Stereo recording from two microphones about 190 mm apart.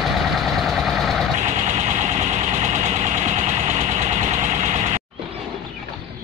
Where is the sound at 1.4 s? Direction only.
35° right (ahead or behind).